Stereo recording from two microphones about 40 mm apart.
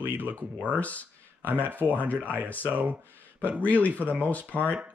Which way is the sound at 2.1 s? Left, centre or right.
Left.